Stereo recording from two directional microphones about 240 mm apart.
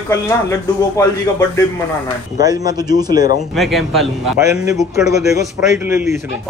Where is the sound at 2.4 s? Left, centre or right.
Centre.